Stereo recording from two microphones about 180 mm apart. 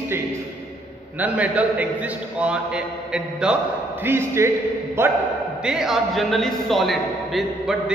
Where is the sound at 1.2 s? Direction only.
10° right (ahead or behind).